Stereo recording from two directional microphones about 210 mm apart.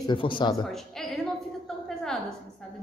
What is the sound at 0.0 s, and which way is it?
Speech, 25° left (ahead or behind).